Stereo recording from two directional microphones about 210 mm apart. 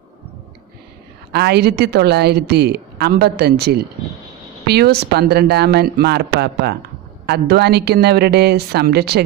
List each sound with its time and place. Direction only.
1.3 s a woman's voice: 50° right (ahead or behind)